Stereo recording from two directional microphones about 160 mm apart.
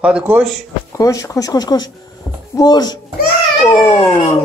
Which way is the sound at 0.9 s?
20° left (ahead or behind).